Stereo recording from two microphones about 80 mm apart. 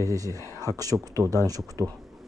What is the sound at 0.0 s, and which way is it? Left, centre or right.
Speech, right.